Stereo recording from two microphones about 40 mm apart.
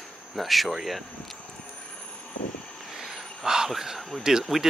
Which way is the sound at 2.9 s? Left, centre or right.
Centre.